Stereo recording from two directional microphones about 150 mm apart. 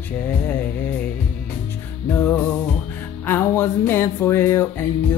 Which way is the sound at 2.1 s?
15° left (ahead or behind).